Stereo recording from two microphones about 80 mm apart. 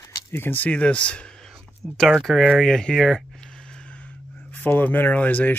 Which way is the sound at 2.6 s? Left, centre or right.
Centre.